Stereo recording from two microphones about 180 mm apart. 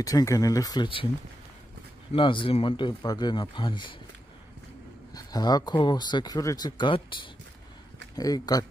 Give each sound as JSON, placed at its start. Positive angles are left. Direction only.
{"t": 0.0, "sound": "speech", "side_deg": 20}
{"t": 2.1, "sound": "speech", "side_deg": 30}
{"t": 5.1, "sound": "speech", "side_deg": 20}
{"t": 8.2, "sound": "speech", "side_deg": 20}